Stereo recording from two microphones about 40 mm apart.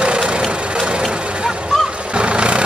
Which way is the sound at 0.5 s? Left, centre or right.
Right.